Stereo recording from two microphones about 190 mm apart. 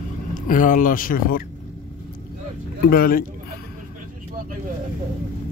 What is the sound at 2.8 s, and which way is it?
Speech, 50° left (ahead or behind).